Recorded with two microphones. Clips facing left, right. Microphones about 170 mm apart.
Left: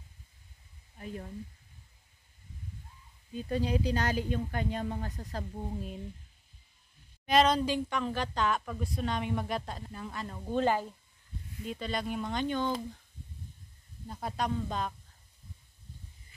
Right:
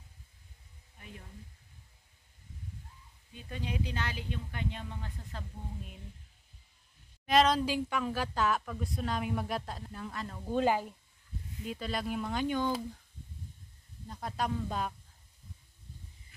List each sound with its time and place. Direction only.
0.9 s a sound: 40° left (ahead or behind)
3.3 s speech: 35° left (ahead or behind)
7.2 s speech: centre (ahead or behind)
10.5 s speech: 10° right (ahead or behind)
14.0 s speech: 5° left (ahead or behind)